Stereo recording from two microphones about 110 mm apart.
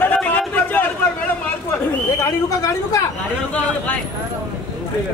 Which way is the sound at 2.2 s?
30° left (ahead or behind).